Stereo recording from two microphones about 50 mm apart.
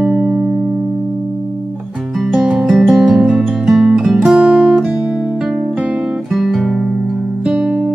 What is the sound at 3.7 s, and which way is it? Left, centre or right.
Guitar, centre.